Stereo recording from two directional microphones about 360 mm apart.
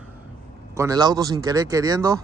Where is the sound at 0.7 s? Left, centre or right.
Centre.